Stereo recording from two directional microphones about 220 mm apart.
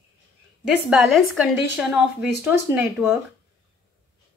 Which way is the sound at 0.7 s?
5° right (ahead or behind).